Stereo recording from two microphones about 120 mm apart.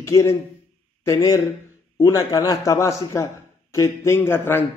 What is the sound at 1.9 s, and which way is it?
A man's voice, 25° left (ahead or behind).